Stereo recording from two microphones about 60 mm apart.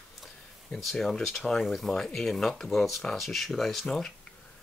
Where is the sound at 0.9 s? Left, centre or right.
Centre.